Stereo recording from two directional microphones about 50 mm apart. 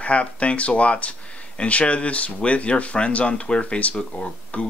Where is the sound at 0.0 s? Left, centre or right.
Left.